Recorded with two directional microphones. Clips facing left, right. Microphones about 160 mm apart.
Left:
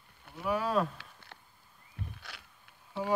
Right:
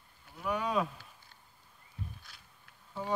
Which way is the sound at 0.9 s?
75° left (ahead or behind).